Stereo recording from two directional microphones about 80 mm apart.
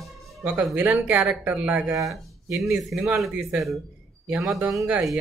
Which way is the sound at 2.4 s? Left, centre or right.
Right.